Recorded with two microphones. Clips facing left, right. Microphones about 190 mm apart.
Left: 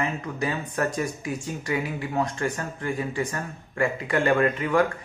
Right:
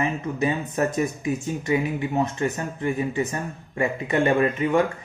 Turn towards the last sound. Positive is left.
turn(degrees=-20)  # may be behind; listen again after turning